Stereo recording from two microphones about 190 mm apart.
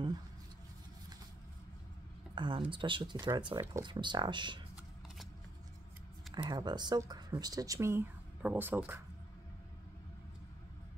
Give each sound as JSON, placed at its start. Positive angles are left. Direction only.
{"t": 2.3, "sound": "speech", "side_deg": -25}
{"t": 6.3, "sound": "speech", "side_deg": -20}